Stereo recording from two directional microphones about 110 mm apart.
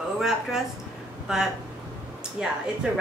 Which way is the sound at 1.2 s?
5° right (ahead or behind).